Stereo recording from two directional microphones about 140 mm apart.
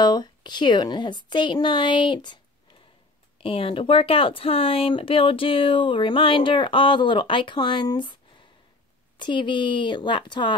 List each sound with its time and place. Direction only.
0.0 s speech: 30° left (ahead or behind)